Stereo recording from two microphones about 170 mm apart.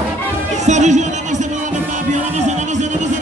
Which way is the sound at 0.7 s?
45° right (ahead or behind).